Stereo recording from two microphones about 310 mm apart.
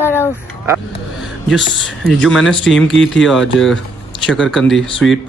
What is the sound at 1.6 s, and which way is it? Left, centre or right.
Speech, left.